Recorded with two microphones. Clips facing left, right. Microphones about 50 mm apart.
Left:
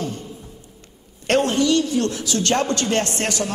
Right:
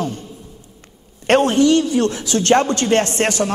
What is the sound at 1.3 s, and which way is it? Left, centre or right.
A man's voice, right.